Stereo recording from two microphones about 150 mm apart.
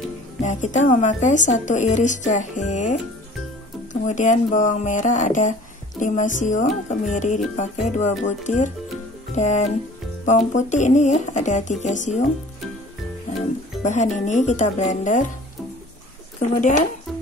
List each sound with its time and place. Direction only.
0.4 s speech: 55° left (ahead or behind)
13.8 s speech: 55° left (ahead or behind)
16.3 s speech: 50° left (ahead or behind)